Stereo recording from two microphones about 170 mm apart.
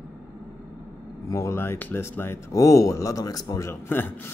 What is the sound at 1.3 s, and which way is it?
Speech, 15° left (ahead or behind).